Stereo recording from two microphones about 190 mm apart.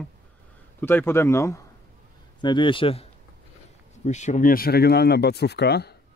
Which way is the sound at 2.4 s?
25° left (ahead or behind).